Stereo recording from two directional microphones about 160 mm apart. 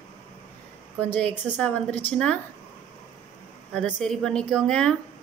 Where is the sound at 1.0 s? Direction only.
10° left (ahead or behind).